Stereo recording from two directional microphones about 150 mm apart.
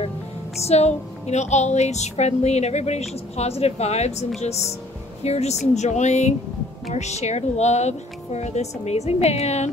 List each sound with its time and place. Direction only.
0.6 s speech: 45° left (ahead or behind)